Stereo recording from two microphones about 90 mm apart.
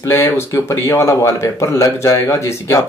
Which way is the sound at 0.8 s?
30° left (ahead or behind).